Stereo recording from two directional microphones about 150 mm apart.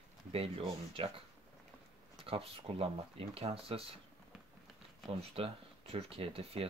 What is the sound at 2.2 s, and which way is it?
Speech, 40° right (ahead or behind).